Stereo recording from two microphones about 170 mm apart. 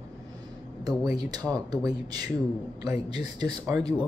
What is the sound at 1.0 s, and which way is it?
Speech, 25° right (ahead or behind).